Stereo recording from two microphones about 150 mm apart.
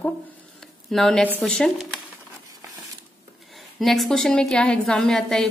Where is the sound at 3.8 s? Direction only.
Centre (ahead or behind).